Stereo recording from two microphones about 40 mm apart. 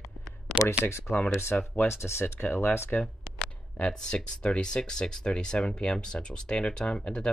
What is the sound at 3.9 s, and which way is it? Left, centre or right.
Speech, left.